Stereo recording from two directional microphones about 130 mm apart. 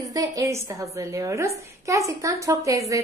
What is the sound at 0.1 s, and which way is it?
A woman's voice, 25° right (ahead or behind).